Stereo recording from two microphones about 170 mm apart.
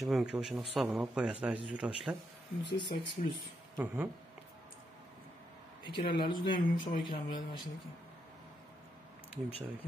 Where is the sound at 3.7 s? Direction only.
10° right (ahead or behind).